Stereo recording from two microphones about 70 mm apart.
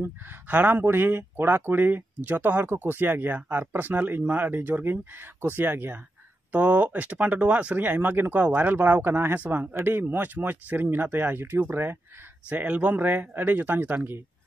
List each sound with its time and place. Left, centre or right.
0.0 s speech: right
12.4 s speech: right